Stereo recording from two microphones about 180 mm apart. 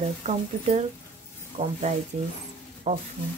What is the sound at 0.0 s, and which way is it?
Speech, 40° right (ahead or behind).